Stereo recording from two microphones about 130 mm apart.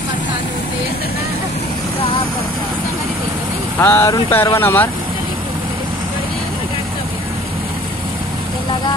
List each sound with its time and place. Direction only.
3.8 s speech: 20° left (ahead or behind)